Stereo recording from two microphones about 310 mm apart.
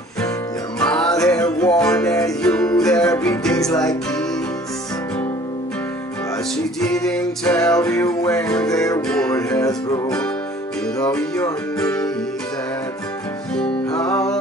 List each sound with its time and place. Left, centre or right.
0.7 s music: centre
6.9 s music: centre
13.6 s music: centre